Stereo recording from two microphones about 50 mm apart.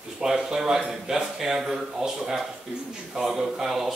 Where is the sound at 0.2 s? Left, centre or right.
Centre.